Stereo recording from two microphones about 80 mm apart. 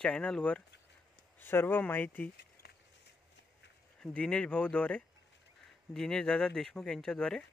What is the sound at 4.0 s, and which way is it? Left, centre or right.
Speech, centre.